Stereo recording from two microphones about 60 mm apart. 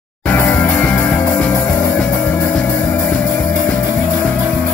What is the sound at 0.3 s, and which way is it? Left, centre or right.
Music, left.